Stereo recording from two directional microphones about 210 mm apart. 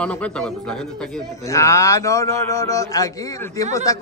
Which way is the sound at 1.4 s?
15° left (ahead or behind).